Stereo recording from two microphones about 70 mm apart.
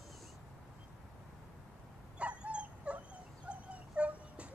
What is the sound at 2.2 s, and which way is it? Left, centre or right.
Dog, centre.